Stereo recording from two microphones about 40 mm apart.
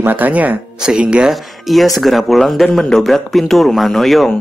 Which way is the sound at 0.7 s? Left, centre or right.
Centre.